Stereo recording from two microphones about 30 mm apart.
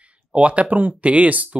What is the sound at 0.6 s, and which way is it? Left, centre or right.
Speech, right.